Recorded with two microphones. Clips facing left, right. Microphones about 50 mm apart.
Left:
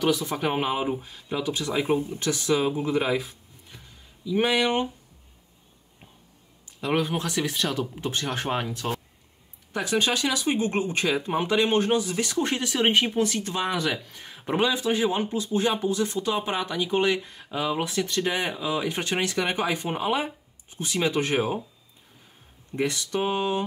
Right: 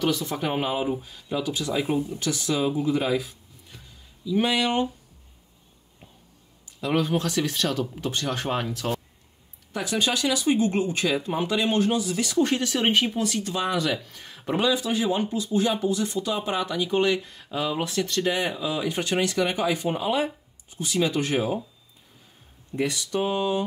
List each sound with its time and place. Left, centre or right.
0.0 s speech: centre
1.4 s speech: left
4.6 s speech: left
6.9 s speech: centre
8.1 s speech: left
8.5 s speech: centre
9.8 s speech: left
11.4 s speech: left
13.2 s speech: left
13.9 s speech: centre
14.6 s speech: left; by 18.9 s centre
18.9 s speech: left
22.7 s speech: left